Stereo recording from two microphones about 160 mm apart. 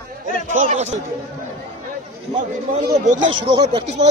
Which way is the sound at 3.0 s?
50° right (ahead or behind).